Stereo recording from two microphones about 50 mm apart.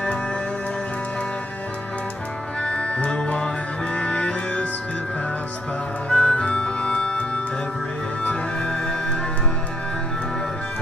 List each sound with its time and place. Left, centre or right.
2.6 s music: left
6.0 s music: left